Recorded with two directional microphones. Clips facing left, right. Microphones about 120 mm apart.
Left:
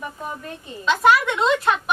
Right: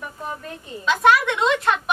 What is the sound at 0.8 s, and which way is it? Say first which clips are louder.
A woman's voice: even; centre (ahead or behind).